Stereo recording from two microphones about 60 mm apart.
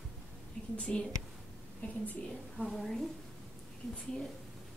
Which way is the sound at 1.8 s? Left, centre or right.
Left.